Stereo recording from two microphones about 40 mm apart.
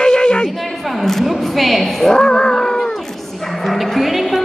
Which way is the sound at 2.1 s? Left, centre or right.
Left.